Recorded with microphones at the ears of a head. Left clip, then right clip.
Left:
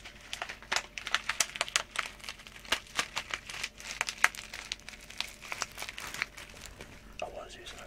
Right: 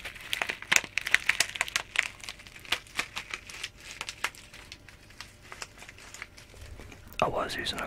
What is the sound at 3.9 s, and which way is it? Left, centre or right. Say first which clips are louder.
Crumpling: left 7 dB; left.